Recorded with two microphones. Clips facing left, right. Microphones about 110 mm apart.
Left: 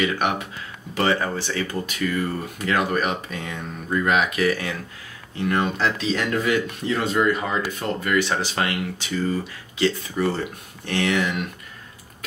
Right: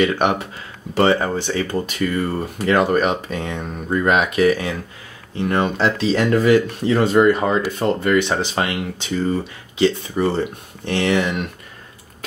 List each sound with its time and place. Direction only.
0.0 s speech: 30° right (ahead or behind)
5.4 s speech: 30° right (ahead or behind)